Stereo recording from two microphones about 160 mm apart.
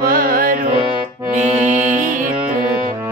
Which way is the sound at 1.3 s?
45° right (ahead or behind).